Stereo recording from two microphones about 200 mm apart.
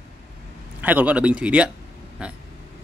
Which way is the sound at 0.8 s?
10° right (ahead or behind).